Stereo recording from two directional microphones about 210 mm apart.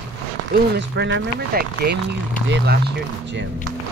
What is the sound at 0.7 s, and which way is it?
Speech, 55° right (ahead or behind).